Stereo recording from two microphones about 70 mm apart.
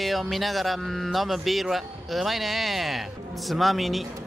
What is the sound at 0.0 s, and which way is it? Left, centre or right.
Speech, centre.